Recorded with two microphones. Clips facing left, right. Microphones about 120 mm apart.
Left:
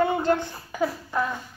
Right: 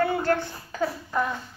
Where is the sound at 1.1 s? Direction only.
Centre (ahead or behind).